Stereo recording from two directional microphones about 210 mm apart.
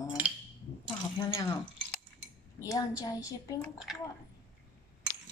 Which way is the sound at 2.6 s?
15° left (ahead or behind).